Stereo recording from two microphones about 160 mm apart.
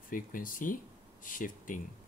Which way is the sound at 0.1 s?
60° left (ahead or behind).